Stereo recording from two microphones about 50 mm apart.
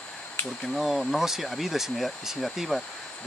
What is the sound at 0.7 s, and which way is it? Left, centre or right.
Speech, centre.